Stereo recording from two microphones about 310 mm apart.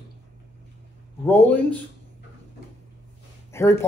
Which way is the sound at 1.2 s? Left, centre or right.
Centre.